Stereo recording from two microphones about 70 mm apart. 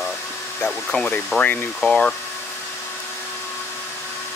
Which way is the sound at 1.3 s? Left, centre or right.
Left.